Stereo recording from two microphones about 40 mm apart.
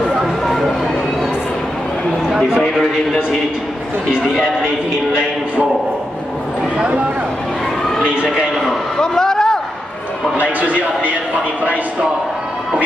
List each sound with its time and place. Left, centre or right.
2.2 s a man's voice: centre
8.0 s speech: right
9.0 s a sound: centre
10.3 s a man's voice: right